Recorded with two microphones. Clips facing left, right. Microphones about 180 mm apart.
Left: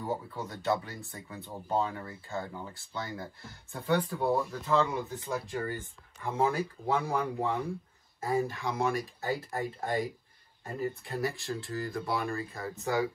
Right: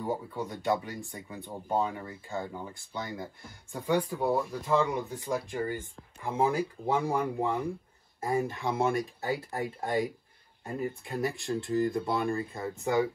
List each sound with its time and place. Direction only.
0.0 s speech: 15° right (ahead or behind)
11.1 s speech: 20° right (ahead or behind)